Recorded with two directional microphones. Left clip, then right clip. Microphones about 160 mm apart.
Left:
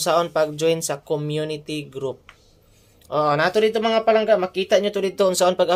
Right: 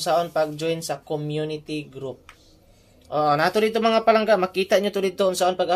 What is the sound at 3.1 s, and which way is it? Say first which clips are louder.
Speech: left 1 dB; 20° left (ahead or behind).